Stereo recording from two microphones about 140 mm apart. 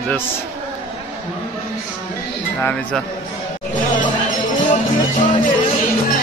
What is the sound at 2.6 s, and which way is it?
Speech, 10° left (ahead or behind).